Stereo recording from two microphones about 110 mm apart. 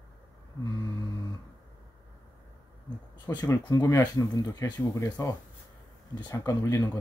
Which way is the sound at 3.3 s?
35° left (ahead or behind).